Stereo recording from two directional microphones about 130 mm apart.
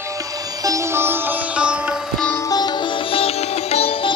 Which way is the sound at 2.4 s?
30° left (ahead or behind).